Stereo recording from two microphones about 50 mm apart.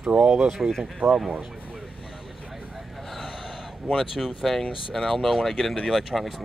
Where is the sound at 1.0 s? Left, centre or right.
Centre.